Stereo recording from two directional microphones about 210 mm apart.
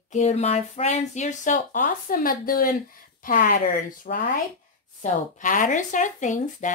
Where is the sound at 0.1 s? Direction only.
35° left (ahead or behind).